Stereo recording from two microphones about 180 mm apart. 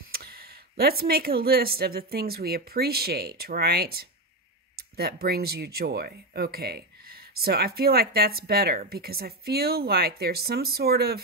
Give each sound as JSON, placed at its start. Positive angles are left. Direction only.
{"t": 0.1, "sound": "speech", "side_deg": -60}